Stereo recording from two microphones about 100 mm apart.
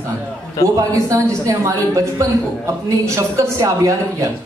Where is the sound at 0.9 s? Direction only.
30° right (ahead or behind).